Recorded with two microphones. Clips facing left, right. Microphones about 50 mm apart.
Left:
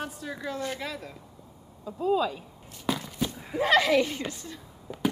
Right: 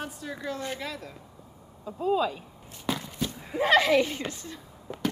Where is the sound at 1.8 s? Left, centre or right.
Right.